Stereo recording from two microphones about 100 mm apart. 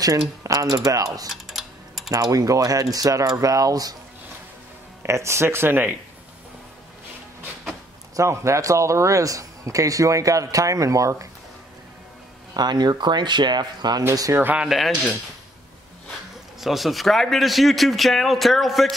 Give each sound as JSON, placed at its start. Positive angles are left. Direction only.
{"t": 0.4, "sound": "a man's voice", "side_deg": -35}
{"t": 1.3, "sound": "typing", "side_deg": 0}
{"t": 2.0, "sound": "a man's voice", "side_deg": -35}
{"t": 5.0, "sound": "speech", "side_deg": -30}
{"t": 8.2, "sound": "a man's voice", "side_deg": -30}
{"t": 12.5, "sound": "a man's voice", "side_deg": -45}
{"t": 14.4, "sound": "speech", "side_deg": -15}
{"t": 14.7, "sound": "speech", "side_deg": 0}
{"t": 16.6, "sound": "speech", "side_deg": 0}